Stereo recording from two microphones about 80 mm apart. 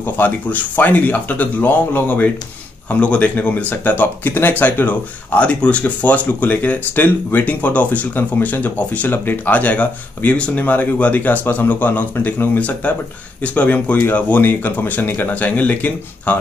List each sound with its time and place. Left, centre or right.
0.0 s speech: left